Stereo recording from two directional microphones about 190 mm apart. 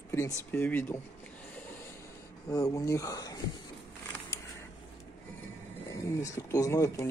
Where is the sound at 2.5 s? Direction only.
15° left (ahead or behind).